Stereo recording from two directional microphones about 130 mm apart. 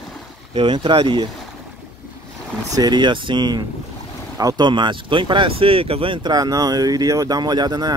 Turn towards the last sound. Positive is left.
turn(degrees=-30)  # may be behind; listen again after turning